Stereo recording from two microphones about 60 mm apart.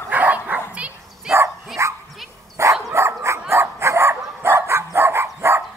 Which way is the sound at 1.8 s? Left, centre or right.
Right.